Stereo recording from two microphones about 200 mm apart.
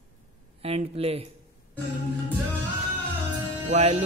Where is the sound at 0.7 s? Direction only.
30° right (ahead or behind).